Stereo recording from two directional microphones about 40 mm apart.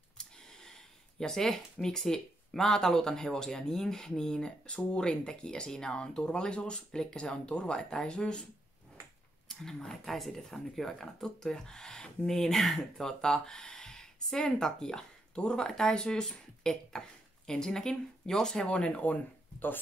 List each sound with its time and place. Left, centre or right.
0.2 s a sound: centre
2.9 s speech: centre
9.5 s speech: centre; by 19.0 s left